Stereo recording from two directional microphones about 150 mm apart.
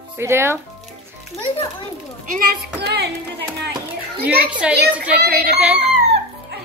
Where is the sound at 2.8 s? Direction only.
90° right.